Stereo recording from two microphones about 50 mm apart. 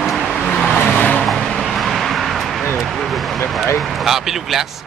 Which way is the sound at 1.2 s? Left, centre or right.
Centre.